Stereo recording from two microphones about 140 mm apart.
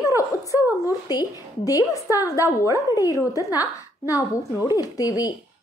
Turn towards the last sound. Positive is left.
turn(degrees=25)  # may be behind; listen again after turning